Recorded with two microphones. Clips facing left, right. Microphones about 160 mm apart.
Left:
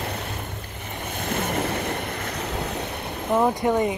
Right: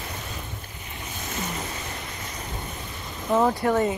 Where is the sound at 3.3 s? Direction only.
10° left (ahead or behind).